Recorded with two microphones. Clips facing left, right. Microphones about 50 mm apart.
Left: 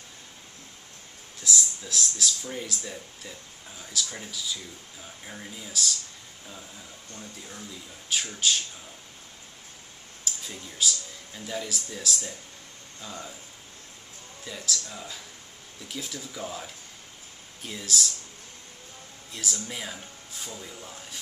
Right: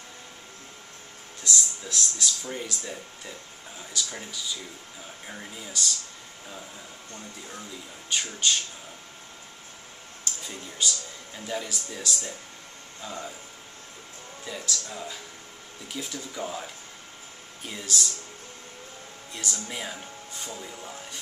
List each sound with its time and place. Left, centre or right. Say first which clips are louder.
1.4 s speech: even; centre
5.2 s speech: right 1 dB; centre
8.1 s speech: even; centre
10.2 s speech: right 1 dB; centre
13.0 s speech: right 3 dB; centre
14.4 s speech: even; centre
17.8 s speech: even; centre
19.3 s speech: even; centre
20.5 s speech: right 2 dB; centre